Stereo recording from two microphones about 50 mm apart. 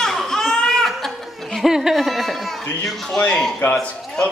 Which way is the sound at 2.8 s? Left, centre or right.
Centre.